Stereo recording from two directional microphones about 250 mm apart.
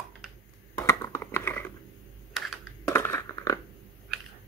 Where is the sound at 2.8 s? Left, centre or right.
Centre.